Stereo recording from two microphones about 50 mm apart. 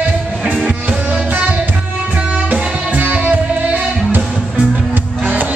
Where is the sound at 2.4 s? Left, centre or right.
Right.